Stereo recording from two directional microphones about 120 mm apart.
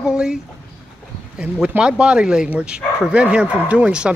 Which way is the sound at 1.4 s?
10° right (ahead or behind).